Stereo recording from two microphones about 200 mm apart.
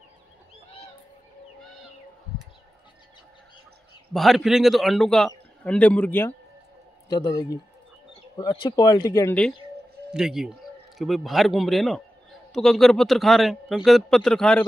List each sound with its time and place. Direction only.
4.1 s a man's voice: centre (ahead or behind)
7.1 s speech: 20° left (ahead or behind)
10.1 s a man's voice: centre (ahead or behind)